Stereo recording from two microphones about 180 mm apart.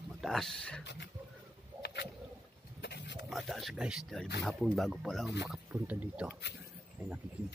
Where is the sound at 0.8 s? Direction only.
70° left (ahead or behind).